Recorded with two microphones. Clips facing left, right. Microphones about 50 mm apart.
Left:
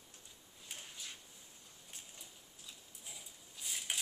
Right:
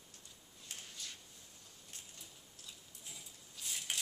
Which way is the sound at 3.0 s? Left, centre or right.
Centre.